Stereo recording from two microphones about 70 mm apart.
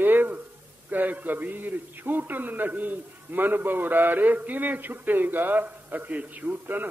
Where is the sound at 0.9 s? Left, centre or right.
Right.